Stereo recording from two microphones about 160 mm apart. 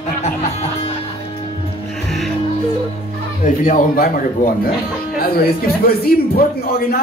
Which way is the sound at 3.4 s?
55° left (ahead or behind).